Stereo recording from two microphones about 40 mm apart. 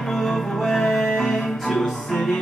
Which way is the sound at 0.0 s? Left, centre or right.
Centre.